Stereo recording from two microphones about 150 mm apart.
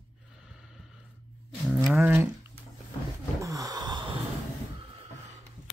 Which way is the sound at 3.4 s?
25° right (ahead or behind).